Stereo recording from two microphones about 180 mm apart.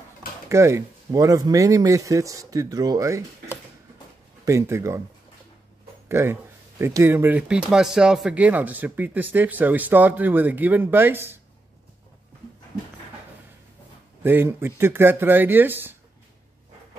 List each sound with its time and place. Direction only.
0.5 s speech: 15° right (ahead or behind)
6.0 s speech: 15° right (ahead or behind)
14.2 s speech: 10° right (ahead or behind)